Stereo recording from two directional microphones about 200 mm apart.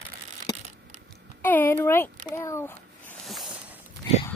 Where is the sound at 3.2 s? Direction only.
Centre (ahead or behind).